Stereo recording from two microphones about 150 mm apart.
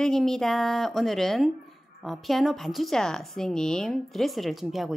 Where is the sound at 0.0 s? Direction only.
5° left (ahead or behind).